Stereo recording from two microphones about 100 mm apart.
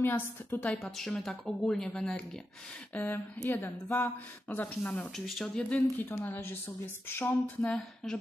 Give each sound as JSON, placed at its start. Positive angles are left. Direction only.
{"t": 0.0, "sound": "a sound", "side_deg": 20}
{"t": 0.8, "sound": "speech", "side_deg": 5}
{"t": 5.1, "sound": "speech", "side_deg": 0}
{"t": 5.6, "sound": "speech", "side_deg": 15}
{"t": 6.0, "sound": "speech", "side_deg": 35}
{"t": 7.1, "sound": "a sound", "side_deg": 25}